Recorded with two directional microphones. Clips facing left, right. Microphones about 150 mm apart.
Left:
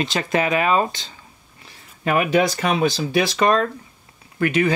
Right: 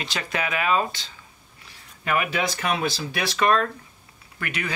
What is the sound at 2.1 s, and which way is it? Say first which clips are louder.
Speech: left 7 dB; 30° left (ahead or behind).